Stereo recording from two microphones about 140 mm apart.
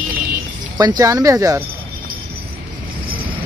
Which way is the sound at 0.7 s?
30° right (ahead or behind).